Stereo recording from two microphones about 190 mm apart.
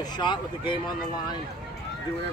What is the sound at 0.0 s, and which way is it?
Speech, 25° left (ahead or behind).